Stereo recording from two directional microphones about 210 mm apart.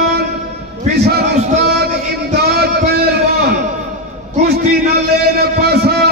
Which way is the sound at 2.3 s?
50° right (ahead or behind).